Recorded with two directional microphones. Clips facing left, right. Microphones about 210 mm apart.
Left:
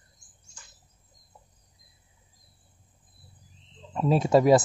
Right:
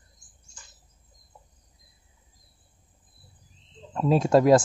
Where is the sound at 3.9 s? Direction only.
Centre (ahead or behind).